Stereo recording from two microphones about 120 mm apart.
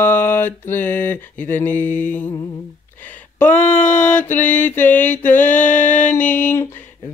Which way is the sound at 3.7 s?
90° left.